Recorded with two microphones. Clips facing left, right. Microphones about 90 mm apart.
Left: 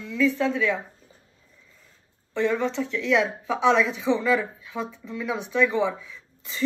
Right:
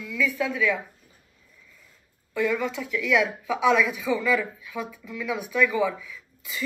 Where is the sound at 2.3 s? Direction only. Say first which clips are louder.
Left 2 dB; 30° left (ahead or behind).